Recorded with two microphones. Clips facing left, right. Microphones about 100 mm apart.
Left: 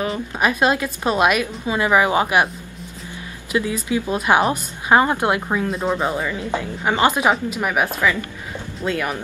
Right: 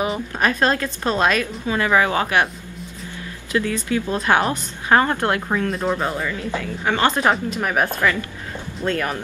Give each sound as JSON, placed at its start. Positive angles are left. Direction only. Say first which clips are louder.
{"t": 0.3, "sound": "speech", "louder": "left 2 dB", "side_deg": 10}
{"t": 3.5, "sound": "speech", "louder": "even", "side_deg": 15}
{"t": 5.9, "sound": "speech", "louder": "left 2 dB", "side_deg": 15}